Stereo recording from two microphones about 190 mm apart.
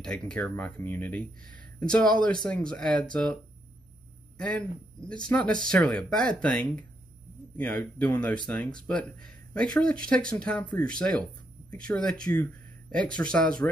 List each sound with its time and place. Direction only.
0.0 s speech: 5° left (ahead or behind)
4.4 s speech: 5° left (ahead or behind)
11.7 s speech: 5° left (ahead or behind)